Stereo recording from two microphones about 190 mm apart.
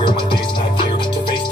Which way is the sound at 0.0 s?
25° left (ahead or behind).